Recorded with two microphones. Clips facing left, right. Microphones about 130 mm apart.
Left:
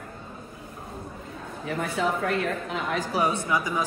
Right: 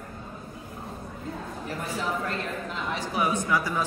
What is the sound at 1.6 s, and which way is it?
Speech, 65° left (ahead or behind).